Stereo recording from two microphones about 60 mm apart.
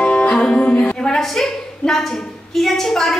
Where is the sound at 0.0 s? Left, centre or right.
Centre.